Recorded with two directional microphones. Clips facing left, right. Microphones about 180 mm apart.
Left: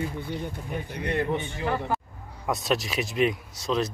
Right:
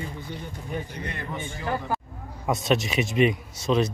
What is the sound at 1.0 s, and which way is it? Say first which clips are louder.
Speech: left 7 dB; 65° left (ahead or behind).